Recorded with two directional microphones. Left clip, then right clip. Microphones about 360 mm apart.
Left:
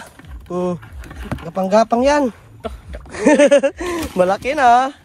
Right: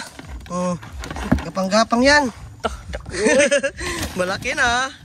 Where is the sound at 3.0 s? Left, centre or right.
Centre.